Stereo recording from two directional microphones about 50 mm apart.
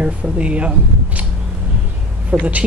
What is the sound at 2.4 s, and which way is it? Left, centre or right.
Speech, right.